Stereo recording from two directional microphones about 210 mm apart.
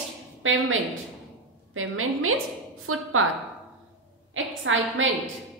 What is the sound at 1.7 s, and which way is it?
A woman's voice, 80° right.